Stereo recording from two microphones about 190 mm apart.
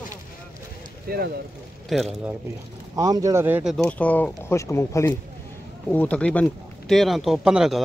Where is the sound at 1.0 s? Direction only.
55° right (ahead or behind).